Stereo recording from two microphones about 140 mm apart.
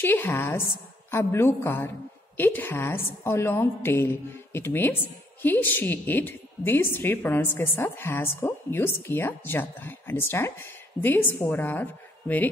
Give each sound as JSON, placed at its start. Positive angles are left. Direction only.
{"t": 0.0, "sound": "a woman's voice", "side_deg": 15}